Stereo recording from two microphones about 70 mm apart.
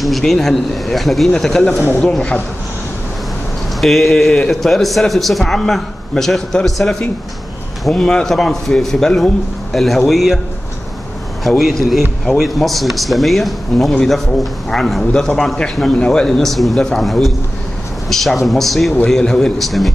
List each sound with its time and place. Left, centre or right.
0.0 s a man's voice: centre
1.9 s speech: left
3.8 s a man's voice: centre
11.4 s a man's voice: centre